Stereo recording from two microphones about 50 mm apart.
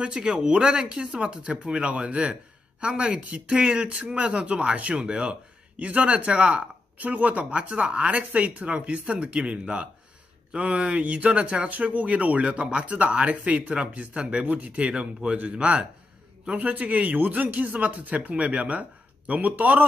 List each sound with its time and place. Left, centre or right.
0.0 s speech: centre
16.5 s speech: right